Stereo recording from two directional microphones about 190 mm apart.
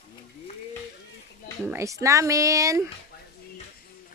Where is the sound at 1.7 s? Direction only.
15° right (ahead or behind).